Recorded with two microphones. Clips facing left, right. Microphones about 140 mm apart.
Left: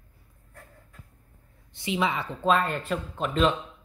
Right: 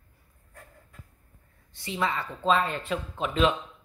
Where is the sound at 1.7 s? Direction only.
15° left (ahead or behind).